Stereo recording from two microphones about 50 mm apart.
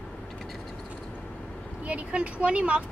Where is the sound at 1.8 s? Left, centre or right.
Right.